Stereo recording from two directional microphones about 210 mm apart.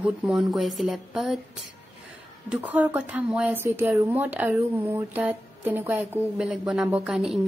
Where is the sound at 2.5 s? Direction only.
10° right (ahead or behind).